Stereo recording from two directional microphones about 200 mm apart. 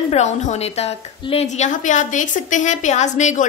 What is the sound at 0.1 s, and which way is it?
A woman's voice, 35° left (ahead or behind).